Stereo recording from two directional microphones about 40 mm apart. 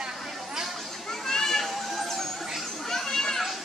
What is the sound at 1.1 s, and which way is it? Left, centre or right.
Children playing, centre.